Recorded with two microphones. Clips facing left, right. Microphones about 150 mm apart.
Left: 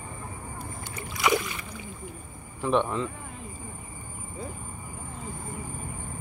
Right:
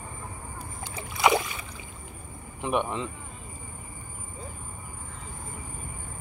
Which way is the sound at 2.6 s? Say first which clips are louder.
Left 3 dB; 15° right (ahead or behind).